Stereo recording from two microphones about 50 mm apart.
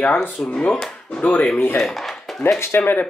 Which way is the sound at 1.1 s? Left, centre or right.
Left.